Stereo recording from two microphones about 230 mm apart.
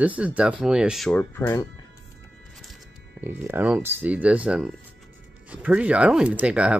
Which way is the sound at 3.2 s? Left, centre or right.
Centre.